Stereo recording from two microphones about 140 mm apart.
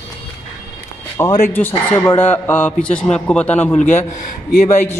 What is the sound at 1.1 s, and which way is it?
Speech, 20° left (ahead or behind).